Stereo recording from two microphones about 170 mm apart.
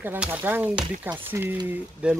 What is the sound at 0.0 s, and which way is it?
Speech, 10° right (ahead or behind).